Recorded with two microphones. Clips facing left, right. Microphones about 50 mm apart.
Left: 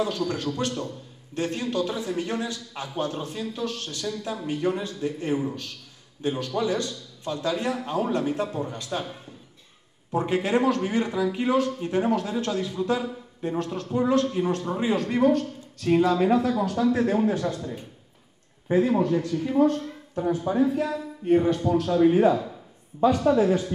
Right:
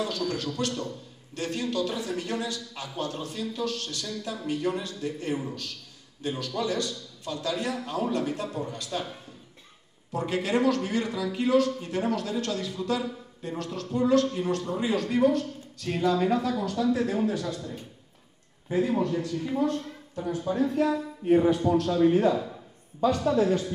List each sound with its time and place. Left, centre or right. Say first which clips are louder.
0.6 s a man's voice: left 2 dB; centre
10.1 s a man's voice: left 3 dB; left
17.6 s a man's voice: left 3 dB; left
20.2 s a man's voice: left 4 dB; left
20.6 s speech: even; centre
22.0 s a man's voice: left 4 dB; centre